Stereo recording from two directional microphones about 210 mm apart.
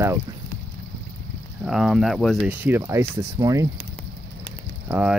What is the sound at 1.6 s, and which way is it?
Speech, centre (ahead or behind).